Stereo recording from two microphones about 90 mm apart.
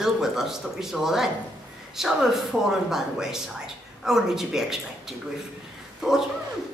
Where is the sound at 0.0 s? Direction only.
5° right (ahead or behind).